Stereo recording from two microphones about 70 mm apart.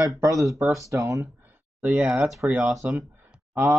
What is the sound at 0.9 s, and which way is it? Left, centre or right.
Speech, right.